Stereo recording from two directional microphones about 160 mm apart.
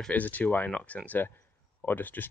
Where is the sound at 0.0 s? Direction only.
10° left (ahead or behind).